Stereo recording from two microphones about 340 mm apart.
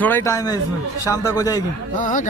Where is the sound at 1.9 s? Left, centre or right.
Left.